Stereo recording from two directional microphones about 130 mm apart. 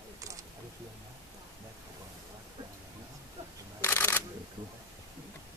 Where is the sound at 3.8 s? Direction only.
20° left (ahead or behind).